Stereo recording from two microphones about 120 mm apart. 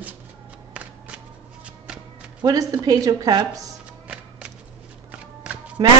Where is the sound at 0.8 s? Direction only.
10° right (ahead or behind).